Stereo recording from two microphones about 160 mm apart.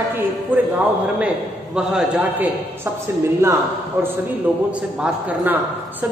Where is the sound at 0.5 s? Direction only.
10° right (ahead or behind).